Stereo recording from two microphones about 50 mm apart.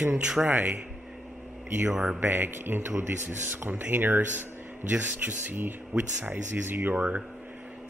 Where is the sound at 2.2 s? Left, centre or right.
Right.